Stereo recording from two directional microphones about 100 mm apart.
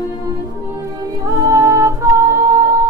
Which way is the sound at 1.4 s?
30° right (ahead or behind).